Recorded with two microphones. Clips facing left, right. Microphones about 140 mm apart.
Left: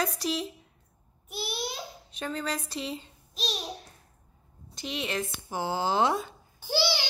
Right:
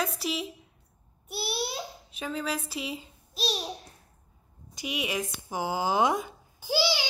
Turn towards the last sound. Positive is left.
turn(degrees=-10)  # may be behind; listen again after turning